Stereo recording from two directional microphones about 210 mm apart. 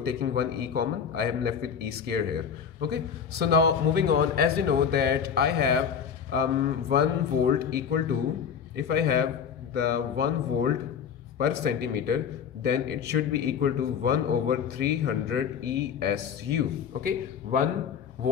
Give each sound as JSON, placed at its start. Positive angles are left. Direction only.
{"t": 0.0, "sound": "a man's voice", "side_deg": -50}